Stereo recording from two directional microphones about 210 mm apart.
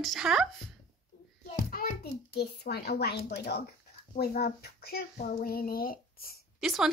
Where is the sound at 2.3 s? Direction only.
50° left (ahead or behind).